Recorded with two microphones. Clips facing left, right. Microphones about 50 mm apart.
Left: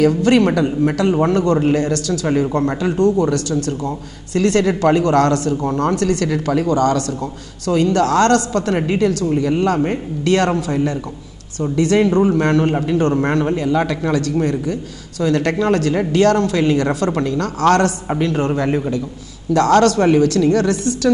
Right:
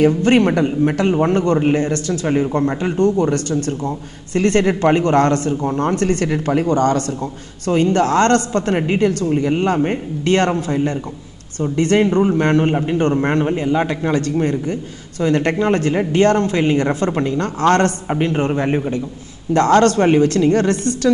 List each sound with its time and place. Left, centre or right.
0.0 s speech: right